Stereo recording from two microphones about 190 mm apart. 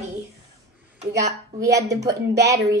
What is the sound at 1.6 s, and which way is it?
Speech, 15° right (ahead or behind).